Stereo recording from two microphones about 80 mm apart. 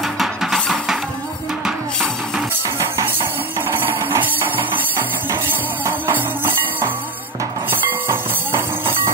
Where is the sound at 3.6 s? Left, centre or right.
Right.